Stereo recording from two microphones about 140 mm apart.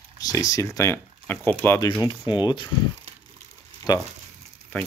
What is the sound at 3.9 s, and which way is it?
Speech, 30° left (ahead or behind).